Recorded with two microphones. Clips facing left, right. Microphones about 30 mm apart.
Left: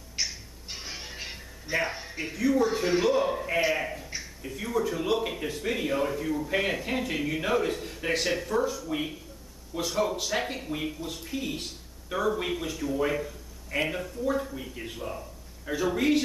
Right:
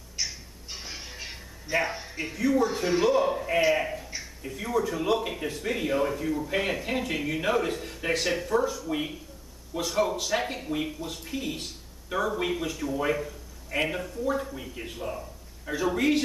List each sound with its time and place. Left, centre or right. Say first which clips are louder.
0.2 s music: left 1 dB; centre
2.6 s speech: even; centre